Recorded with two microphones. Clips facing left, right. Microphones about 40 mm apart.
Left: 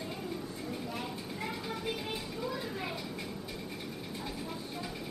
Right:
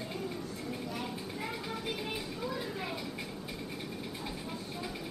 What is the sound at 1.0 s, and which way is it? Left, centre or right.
Children playing, centre.